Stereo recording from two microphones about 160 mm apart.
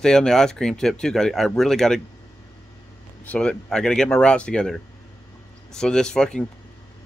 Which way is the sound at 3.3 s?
5° left (ahead or behind).